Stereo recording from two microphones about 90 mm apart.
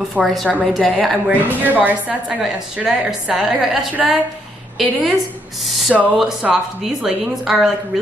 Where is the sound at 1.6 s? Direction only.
20° right (ahead or behind).